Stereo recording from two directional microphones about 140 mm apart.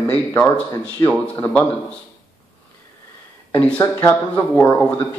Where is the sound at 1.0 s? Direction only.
25° left (ahead or behind).